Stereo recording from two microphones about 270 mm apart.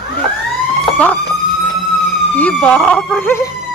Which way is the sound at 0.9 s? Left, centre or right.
Centre.